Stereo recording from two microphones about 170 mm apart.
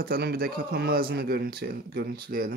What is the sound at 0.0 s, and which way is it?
Speech, 65° right (ahead or behind).